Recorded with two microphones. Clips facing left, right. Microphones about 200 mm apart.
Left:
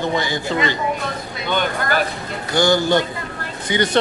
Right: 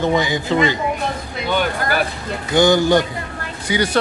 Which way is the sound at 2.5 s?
20° right (ahead or behind).